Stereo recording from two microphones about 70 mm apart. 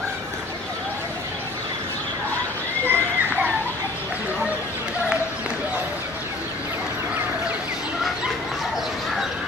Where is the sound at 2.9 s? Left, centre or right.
Right.